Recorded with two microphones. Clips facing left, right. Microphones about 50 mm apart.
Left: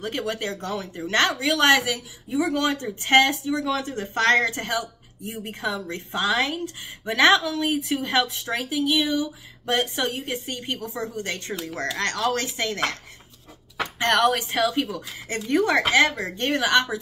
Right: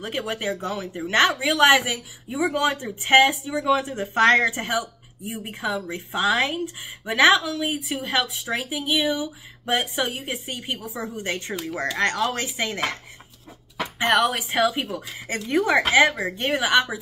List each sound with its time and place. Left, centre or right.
0.0 s speech: centre
13.9 s speech: centre